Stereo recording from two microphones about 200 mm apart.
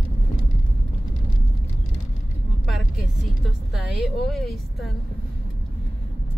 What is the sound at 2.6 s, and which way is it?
Vehicle, centre (ahead or behind).